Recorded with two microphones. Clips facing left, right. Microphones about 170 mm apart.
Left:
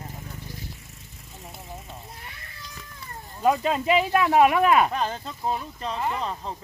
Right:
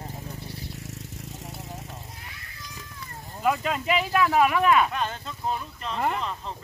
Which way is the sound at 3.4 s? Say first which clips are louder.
Left 3 dB; 35° left (ahead or behind).